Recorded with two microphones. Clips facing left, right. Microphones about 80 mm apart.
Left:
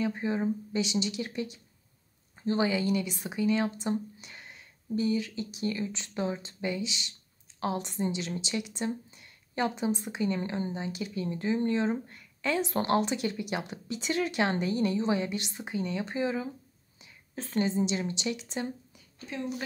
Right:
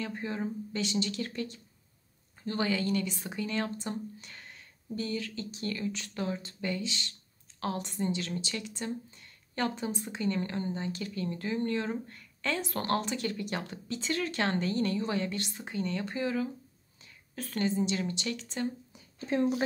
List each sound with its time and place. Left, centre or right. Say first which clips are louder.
0.0 s a woman's voice: left 5 dB; centre
19.1 s a woman's voice: right 8 dB; right